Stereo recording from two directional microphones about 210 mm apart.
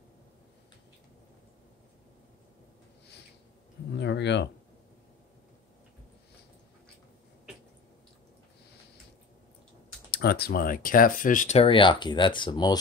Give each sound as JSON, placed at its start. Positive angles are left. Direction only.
{"t": 3.9, "sound": "speech", "side_deg": 55}
{"t": 10.1, "sound": "speech", "side_deg": 50}